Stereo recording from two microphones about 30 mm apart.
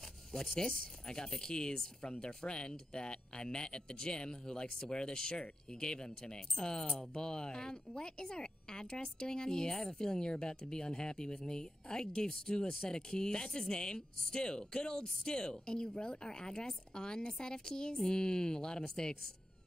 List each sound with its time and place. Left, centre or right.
0.6 s speech: left